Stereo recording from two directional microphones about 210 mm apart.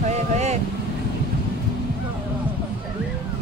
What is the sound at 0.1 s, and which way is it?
Vehicle, 30° right (ahead or behind).